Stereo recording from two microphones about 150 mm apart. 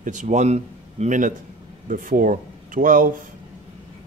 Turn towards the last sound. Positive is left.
turn(degrees=-65)  # may be behind; listen again after turning